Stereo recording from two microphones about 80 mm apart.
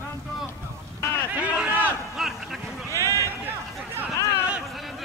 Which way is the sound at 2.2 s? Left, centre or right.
Centre.